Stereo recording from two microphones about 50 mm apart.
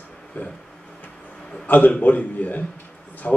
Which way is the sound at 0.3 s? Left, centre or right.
Left.